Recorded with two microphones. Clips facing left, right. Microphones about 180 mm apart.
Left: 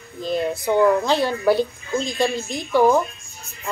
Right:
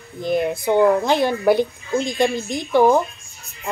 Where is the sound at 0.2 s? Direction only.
15° right (ahead or behind).